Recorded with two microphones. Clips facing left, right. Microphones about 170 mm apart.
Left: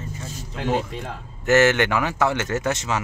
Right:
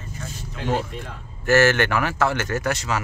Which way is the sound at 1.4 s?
20° left (ahead or behind).